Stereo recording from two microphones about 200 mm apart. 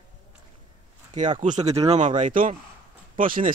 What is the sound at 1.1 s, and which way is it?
Speech, 40° right (ahead or behind).